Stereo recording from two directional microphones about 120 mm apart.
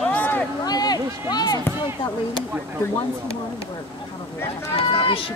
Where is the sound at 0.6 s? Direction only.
35° left (ahead or behind).